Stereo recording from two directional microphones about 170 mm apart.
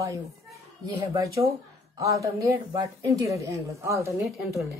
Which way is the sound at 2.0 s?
20° right (ahead or behind).